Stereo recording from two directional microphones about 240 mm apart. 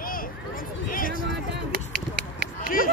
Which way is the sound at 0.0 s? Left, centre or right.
Left.